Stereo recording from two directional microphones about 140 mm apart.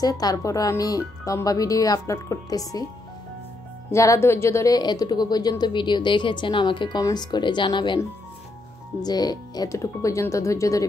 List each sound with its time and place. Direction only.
0.0 s speech: 25° left (ahead or behind)
3.9 s a woman's voice: 20° left (ahead or behind)
9.0 s speech: 30° left (ahead or behind)